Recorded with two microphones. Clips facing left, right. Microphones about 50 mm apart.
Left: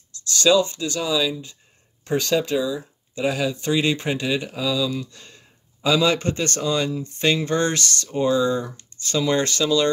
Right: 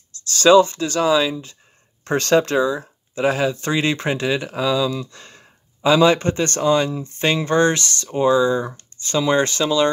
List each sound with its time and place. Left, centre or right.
0.1 s speech: right
2.0 s speech: right
8.6 s a sound: right
9.1 s speech: right